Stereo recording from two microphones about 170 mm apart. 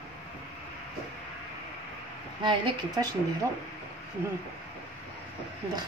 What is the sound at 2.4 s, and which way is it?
Speech, 25° right (ahead or behind).